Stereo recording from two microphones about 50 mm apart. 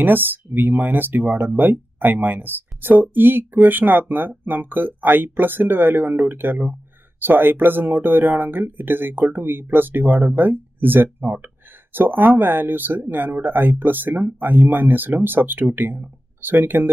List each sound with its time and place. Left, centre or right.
0.0 s speech: right